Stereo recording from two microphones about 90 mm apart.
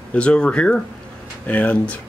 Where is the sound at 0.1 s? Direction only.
10° left (ahead or behind).